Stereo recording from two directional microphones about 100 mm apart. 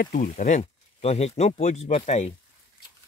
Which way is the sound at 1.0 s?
90° left.